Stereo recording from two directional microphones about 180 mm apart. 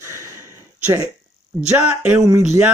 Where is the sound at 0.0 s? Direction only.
15° right (ahead or behind).